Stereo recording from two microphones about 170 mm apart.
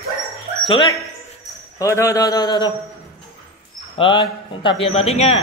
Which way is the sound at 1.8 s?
20° left (ahead or behind).